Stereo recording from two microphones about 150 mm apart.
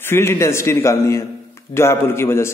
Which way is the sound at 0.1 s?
15° left (ahead or behind).